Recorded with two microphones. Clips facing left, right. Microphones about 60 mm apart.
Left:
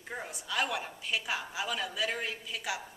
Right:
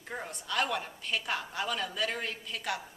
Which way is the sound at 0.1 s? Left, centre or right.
Centre.